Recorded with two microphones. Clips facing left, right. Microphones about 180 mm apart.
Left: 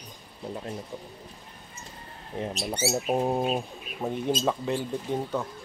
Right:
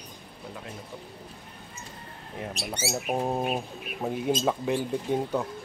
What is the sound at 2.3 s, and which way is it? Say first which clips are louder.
Speech: left 4 dB; 30° left (ahead or behind).